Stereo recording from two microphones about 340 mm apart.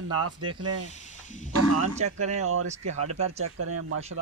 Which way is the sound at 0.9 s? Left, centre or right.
Left.